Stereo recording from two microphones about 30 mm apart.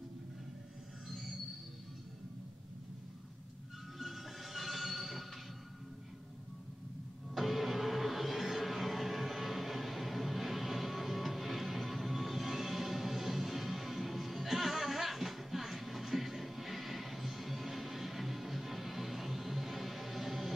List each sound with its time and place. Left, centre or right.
4.0 s music: centre
7.3 s music: centre